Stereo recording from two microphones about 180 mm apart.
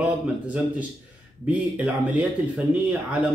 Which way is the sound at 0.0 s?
5° right (ahead or behind).